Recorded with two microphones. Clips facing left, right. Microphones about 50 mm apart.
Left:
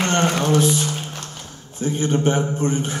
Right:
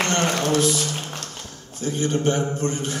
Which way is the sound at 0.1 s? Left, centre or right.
Left.